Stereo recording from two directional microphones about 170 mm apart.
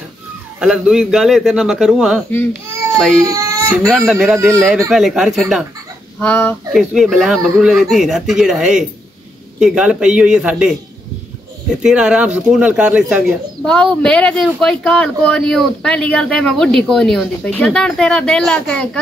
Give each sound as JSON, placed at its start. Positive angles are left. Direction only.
{"t": 0.6, "sound": "speech", "side_deg": -5}
{"t": 3.3, "sound": "baby cry", "side_deg": -20}
{"t": 4.1, "sound": "speech", "side_deg": 0}
{"t": 6.1, "sound": "speech", "side_deg": 10}
{"t": 6.7, "sound": "speech", "side_deg": 0}
{"t": 11.8, "sound": "speech", "side_deg": -5}